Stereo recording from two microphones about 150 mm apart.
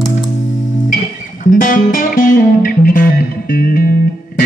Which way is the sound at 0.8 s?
65° left (ahead or behind).